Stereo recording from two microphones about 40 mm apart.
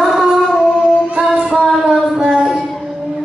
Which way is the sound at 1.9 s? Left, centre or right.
Centre.